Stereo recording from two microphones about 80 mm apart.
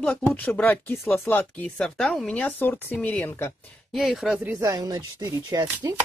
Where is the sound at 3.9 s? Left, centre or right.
Centre.